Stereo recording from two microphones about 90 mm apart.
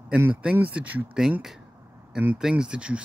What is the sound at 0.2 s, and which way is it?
Speech, 15° right (ahead or behind).